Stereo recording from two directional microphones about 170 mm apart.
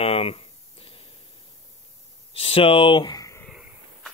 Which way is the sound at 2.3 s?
30° left (ahead or behind).